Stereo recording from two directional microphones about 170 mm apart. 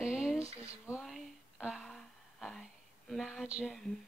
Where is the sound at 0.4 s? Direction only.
35° right (ahead or behind).